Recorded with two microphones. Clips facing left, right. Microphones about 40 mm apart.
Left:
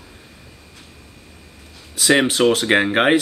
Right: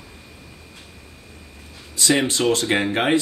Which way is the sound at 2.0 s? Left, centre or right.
Left.